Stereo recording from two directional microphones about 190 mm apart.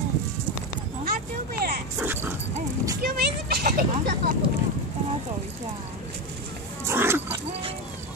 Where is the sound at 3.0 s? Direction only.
55° right (ahead or behind).